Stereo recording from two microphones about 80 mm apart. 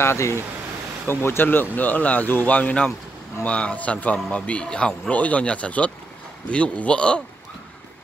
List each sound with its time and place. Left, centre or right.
0.0 s speech: left; by 7.2 s centre